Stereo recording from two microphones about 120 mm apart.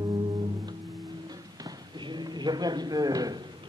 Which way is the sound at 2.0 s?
35° right (ahead or behind).